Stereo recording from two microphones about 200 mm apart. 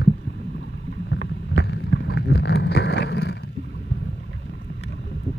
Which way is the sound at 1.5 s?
60° left (ahead or behind).